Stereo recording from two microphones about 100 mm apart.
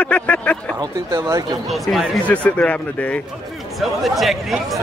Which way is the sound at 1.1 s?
35° right (ahead or behind).